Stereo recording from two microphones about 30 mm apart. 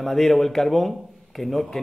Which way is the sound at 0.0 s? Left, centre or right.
Centre.